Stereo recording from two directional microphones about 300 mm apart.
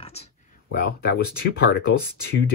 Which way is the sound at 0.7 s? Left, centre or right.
Left.